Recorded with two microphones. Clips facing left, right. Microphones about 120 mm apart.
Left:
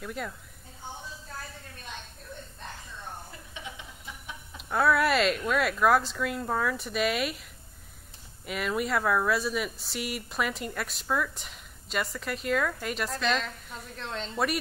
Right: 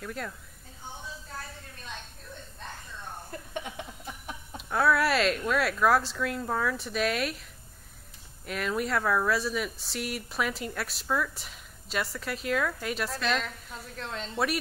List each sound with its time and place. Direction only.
0.0 s speech: 5° left (ahead or behind)
3.3 s a sound: 50° right (ahead or behind)
4.6 s speech: centre (ahead or behind)
8.5 s speech: 5° left (ahead or behind)